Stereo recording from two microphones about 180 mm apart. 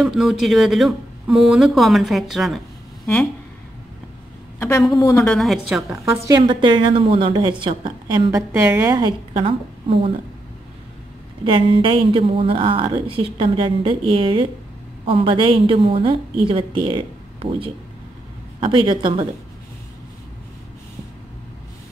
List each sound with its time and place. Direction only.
0.0 s speech: centre (ahead or behind)
4.6 s a woman's voice: 15° left (ahead or behind)
5.2 s speech: centre (ahead or behind)
6.2 s a woman's voice: 20° right (ahead or behind)
11.4 s a woman's voice: 30° right (ahead or behind)